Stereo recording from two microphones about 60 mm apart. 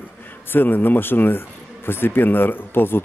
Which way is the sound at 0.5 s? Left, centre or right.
Left.